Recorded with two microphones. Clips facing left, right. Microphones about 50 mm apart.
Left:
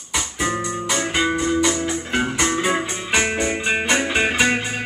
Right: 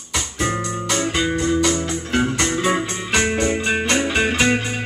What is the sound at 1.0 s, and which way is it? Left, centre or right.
Music, centre.